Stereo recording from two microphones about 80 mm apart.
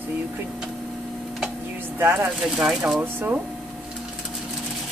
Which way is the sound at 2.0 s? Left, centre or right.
Right.